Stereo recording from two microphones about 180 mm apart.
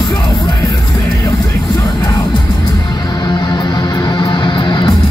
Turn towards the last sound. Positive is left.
turn(degrees=25)  # may be behind; listen again after turning